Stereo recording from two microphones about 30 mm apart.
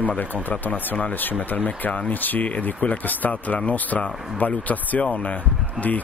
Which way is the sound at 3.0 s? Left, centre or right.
Left.